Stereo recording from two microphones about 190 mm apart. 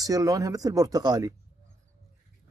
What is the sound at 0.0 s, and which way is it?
Speech, 20° right (ahead or behind).